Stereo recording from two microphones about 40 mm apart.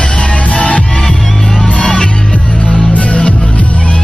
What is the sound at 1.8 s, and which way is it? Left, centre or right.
Music, left.